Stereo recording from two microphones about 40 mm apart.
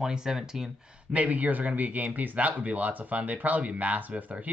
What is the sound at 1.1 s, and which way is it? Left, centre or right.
Speech, right.